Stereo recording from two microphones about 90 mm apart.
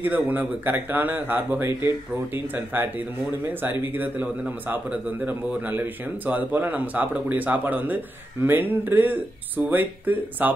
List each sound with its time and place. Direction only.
0.0 s speech: 20° right (ahead or behind)